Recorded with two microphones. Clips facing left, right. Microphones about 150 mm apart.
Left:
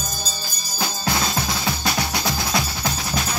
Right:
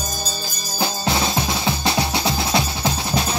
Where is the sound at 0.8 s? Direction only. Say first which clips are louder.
Right 3 dB; 25° right (ahead or behind).